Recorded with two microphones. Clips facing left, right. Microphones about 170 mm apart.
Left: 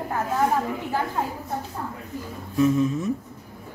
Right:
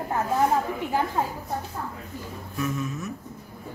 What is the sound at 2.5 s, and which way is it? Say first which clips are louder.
Speech: left 9 dB; 30° left (ahead or behind).